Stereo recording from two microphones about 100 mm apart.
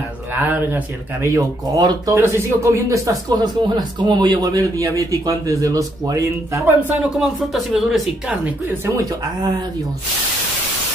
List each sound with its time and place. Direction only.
0.3 s speech: 15° right (ahead or behind)
1.2 s speech: 35° right (ahead or behind)
2.1 s speech: 25° right (ahead or behind)
6.9 s speech: 5° right (ahead or behind)